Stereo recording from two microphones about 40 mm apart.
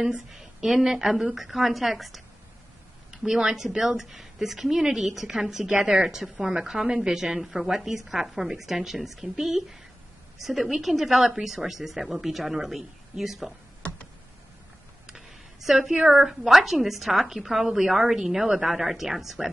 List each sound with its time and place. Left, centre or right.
0.0 s a woman's voice: centre
3.1 s a woman's voice: centre
5.7 s a woman's voice: right
13.8 s tick: left
15.0 s a sound: centre
15.9 s speech: centre
16.3 s a woman's voice: centre